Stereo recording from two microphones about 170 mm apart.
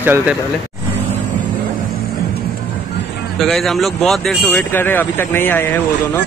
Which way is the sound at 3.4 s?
Centre (ahead or behind).